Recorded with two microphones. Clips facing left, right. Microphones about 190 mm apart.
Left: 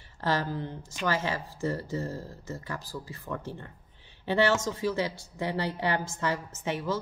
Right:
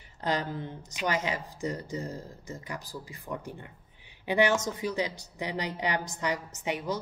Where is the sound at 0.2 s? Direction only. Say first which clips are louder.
Left 1 dB; 20° right (ahead or behind).